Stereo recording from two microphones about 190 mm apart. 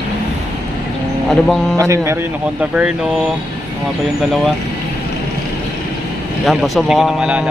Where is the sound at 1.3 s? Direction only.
Centre (ahead or behind).